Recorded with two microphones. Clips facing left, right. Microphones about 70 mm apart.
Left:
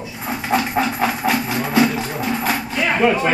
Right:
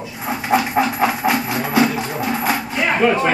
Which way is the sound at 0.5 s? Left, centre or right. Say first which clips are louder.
Right 2 dB; centre.